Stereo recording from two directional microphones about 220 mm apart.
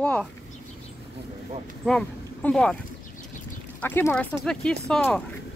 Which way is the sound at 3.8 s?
10° left (ahead or behind).